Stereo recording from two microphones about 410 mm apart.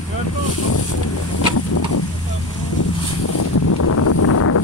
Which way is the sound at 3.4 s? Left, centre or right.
Left.